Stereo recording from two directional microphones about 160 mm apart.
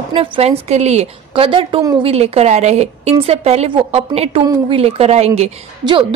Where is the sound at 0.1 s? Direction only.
35° right (ahead or behind).